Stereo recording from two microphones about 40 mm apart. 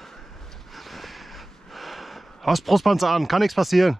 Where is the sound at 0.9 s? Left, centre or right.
Centre.